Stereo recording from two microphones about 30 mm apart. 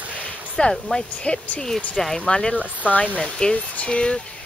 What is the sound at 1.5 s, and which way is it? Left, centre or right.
Speech, centre.